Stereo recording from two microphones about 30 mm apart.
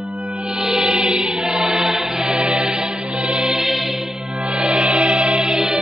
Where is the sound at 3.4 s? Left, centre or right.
Centre.